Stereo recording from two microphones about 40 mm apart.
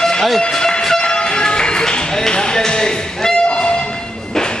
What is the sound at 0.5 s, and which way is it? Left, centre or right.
Music, centre.